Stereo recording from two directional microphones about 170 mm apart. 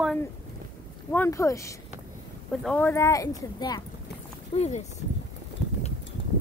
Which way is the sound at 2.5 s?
5° left (ahead or behind).